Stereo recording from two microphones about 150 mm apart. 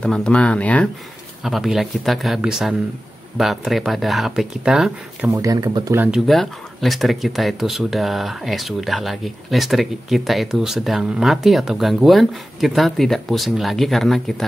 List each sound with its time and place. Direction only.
0.0 s speech: 5° left (ahead or behind)
1.4 s speech: centre (ahead or behind)
5.3 s speech: 20° right (ahead or behind)
6.1 s speech: centre (ahead or behind)